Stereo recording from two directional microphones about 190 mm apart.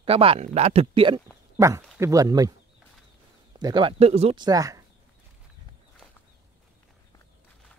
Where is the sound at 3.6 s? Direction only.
25° right (ahead or behind).